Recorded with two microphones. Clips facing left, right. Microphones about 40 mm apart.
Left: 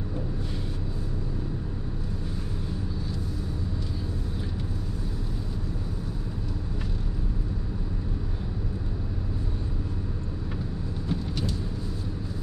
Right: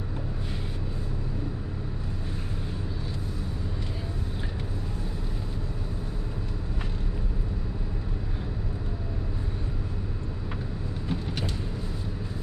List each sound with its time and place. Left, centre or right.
11.1 s vehicle: right